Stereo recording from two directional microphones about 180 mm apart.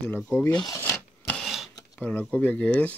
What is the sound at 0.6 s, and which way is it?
Filing, 20° left (ahead or behind).